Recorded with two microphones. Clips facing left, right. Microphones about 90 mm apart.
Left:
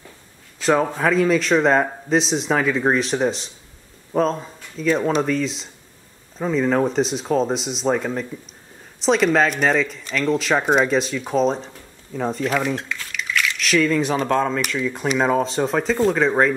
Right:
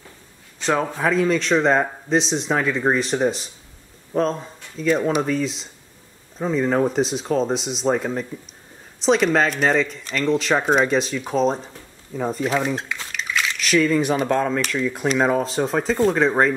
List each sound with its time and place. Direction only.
0.6 s a man's voice: centre (ahead or behind)
12.4 s speech: 20° right (ahead or behind)
13.1 s a sound: 25° right (ahead or behind)
13.6 s a man's voice: centre (ahead or behind)